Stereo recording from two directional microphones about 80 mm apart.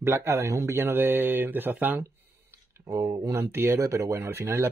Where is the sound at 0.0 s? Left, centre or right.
Right.